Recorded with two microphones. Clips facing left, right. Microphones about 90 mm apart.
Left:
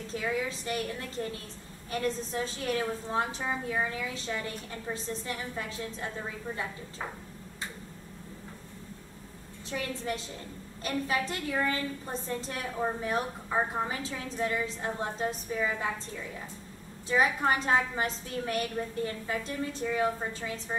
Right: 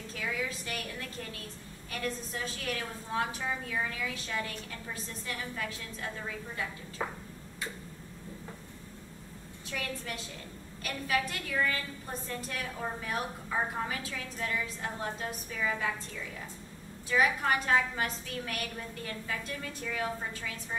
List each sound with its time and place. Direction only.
0.1 s a woman's voice: 25° left (ahead or behind)
1.9 s a woman's voice: 30° left (ahead or behind)
9.7 s a woman's voice: 30° left (ahead or behind)
17.1 s a woman's voice: 25° left (ahead or behind)